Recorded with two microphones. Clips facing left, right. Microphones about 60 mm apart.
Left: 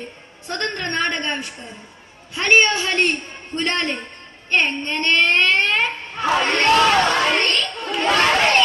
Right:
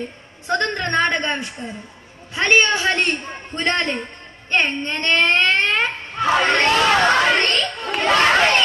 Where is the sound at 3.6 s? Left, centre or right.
Right.